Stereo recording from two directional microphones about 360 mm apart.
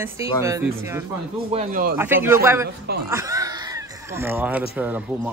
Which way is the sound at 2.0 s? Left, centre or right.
Centre.